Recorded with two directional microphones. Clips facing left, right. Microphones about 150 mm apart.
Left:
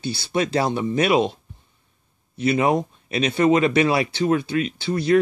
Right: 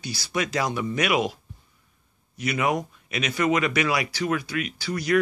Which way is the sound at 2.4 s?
30° left (ahead or behind).